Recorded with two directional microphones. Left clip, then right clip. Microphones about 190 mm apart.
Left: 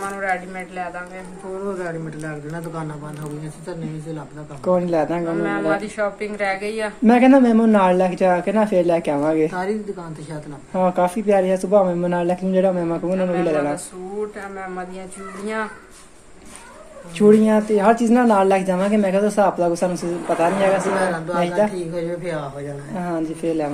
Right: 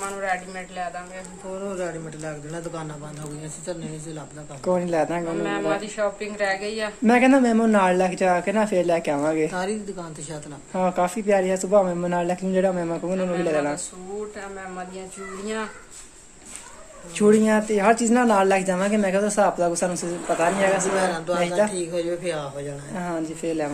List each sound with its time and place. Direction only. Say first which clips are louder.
0.0 s speech: left 3 dB; 15° right (ahead or behind)
1.8 s speech: left 2 dB; 60° right (ahead or behind)
4.6 s speech: left 4 dB; centre (ahead or behind)
5.3 s speech: left 4 dB; 15° right (ahead or behind)
7.1 s speech: left 4 dB; centre (ahead or behind)
9.5 s speech: left 3 dB; 55° right (ahead or behind)
10.7 s speech: left 4 dB; centre (ahead or behind)
17.2 s speech: left 4 dB; centre (ahead or behind)
21.0 s speech: left 2 dB; 55° right (ahead or behind)
21.6 s speech: left 3 dB; 5° right (ahead or behind)
21.9 s speech: left 1 dB; 65° right (ahead or behind)
22.9 s speech: left 4 dB; centre (ahead or behind)